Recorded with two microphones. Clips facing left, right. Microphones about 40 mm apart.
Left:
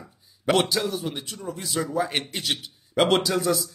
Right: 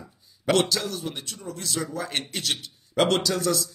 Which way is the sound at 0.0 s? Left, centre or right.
Centre.